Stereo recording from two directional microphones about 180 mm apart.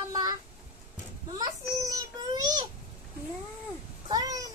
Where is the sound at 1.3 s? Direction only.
20° right (ahead or behind).